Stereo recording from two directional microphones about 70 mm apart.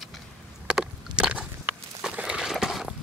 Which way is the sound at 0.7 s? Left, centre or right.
Centre.